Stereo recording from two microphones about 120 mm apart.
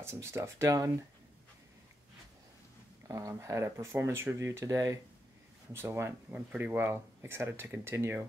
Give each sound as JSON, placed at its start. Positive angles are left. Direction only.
{"t": 0.0, "sound": "speech", "side_deg": -20}
{"t": 3.1, "sound": "speech", "side_deg": -25}